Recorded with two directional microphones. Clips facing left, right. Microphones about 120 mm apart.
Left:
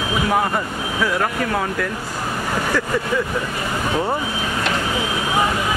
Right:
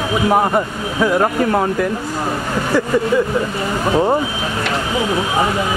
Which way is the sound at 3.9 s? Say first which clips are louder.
Right 7 dB; 20° right (ahead or behind).